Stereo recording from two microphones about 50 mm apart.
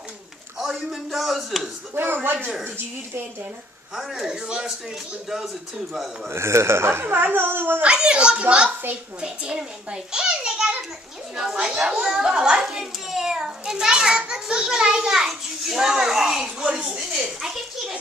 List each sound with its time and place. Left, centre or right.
0.6 s speech: centre
2.0 s speech: right
3.9 s a child's voice: centre
6.3 s speech: right
7.8 s a child's voice: centre
12.6 s a child's voice: centre